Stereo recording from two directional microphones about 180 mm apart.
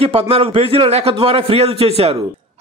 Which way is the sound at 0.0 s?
30° right (ahead or behind).